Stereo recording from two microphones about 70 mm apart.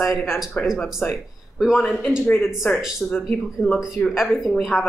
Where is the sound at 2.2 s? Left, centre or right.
Left.